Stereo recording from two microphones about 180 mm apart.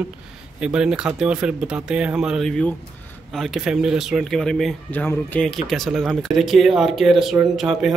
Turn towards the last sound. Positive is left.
turn(degrees=-5)  # may be behind; listen again after turning